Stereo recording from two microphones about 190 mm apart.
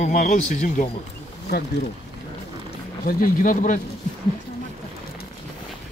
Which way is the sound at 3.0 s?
50° left (ahead or behind).